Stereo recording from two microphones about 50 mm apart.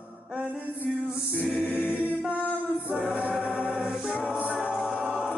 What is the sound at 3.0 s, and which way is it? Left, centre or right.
Choir, right.